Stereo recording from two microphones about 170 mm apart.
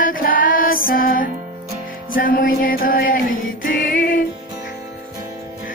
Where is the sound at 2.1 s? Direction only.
55° left (ahead or behind).